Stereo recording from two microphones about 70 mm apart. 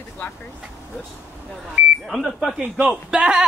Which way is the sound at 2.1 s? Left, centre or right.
Centre.